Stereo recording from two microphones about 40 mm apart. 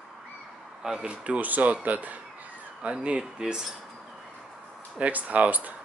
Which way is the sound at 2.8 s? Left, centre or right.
Right.